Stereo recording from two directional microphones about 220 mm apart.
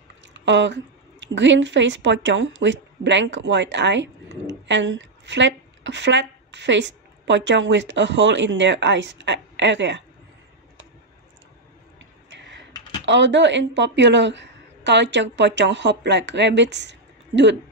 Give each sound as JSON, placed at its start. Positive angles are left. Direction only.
{"t": 0.3, "sound": "speech", "side_deg": -55}
{"t": 12.3, "sound": "a sound", "side_deg": -55}
{"t": 13.0, "sound": "speech", "side_deg": -55}